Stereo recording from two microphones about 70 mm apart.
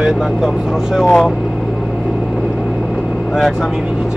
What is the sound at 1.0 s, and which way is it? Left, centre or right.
Speech, centre.